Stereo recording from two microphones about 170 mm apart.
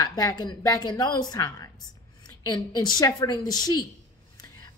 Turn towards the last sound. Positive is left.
turn(degrees=25)  # may be behind; listen again after turning